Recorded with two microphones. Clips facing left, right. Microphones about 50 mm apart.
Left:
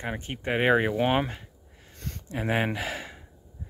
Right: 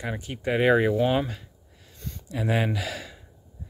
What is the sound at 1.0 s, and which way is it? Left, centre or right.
Speech, left.